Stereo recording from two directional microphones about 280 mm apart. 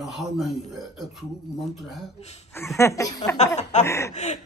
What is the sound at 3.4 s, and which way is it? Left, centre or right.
Speech, left.